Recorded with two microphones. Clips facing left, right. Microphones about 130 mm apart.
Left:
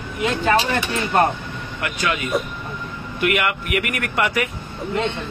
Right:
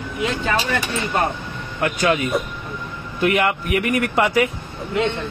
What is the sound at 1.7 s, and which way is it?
Speech, 35° right (ahead or behind).